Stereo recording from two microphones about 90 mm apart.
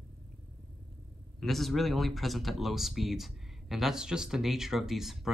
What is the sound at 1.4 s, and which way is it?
Speech, centre (ahead or behind).